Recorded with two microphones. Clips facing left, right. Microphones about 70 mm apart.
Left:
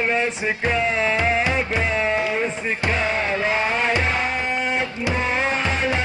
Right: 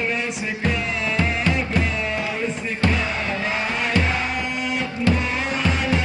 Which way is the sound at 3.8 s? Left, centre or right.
Left.